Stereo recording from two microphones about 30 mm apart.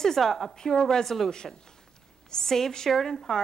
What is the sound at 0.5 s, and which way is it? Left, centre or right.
A woman's voice, left.